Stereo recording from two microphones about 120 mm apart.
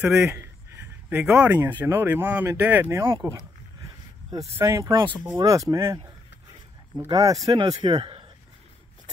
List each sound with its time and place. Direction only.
0.0 s speech: 5° right (ahead or behind)
1.3 s speech: 20° right (ahead or behind)
4.6 s speech: 25° right (ahead or behind)
7.1 s speech: 30° right (ahead or behind); by 8.3 s 50° right (ahead or behind)